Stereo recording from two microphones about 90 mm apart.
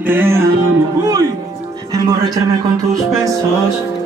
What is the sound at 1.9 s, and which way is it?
Speech, 45° right (ahead or behind).